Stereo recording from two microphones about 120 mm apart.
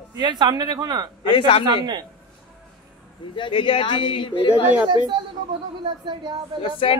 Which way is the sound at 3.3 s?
45° left (ahead or behind).